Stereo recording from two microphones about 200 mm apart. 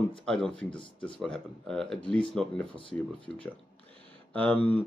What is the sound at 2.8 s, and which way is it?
Speech, 25° left (ahead or behind).